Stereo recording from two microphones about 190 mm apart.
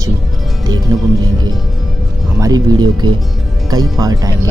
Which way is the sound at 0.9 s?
15° right (ahead or behind).